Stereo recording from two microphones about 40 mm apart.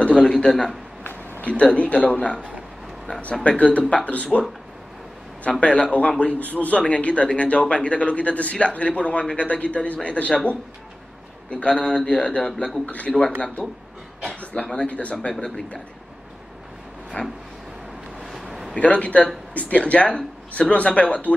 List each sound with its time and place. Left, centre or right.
0.0 s a man's voice: left
0.3 s a man's voice: centre
1.4 s speech: left
3.4 s speech: left
5.6 s a man's voice: left
12.8 s speech: left
14.5 s a man's voice: left
17.2 s speech: left
18.2 s a sound: centre
18.8 s speech: left